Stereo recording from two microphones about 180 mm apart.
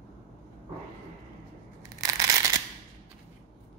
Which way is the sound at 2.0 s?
20° right (ahead or behind).